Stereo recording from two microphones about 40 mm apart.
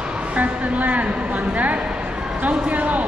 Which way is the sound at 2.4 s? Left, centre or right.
Right.